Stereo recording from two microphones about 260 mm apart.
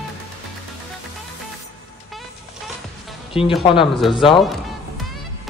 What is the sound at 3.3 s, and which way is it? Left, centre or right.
Speech, left.